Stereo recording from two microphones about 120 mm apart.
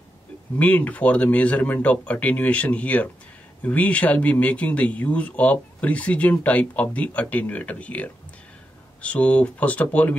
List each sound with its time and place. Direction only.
0.6 s speech: 10° left (ahead or behind)